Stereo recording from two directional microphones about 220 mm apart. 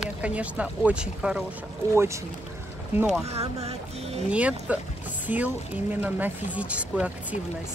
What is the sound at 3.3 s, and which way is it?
Music, 30° right (ahead or behind).